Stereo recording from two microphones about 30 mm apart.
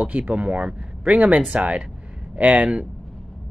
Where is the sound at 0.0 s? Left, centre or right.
Right.